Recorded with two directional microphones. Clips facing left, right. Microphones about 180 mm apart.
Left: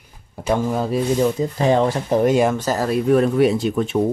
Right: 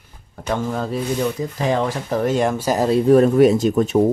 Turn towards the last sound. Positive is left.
turn(degrees=-45)  # may be behind; listen again after turning